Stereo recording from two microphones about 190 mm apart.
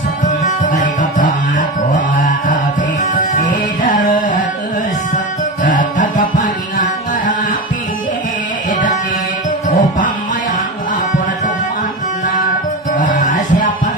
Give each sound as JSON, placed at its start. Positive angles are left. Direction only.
{"t": 0.2, "sound": "music", "side_deg": 45}
{"t": 9.7, "sound": "music", "side_deg": 45}
{"t": 12.9, "sound": "music", "side_deg": 45}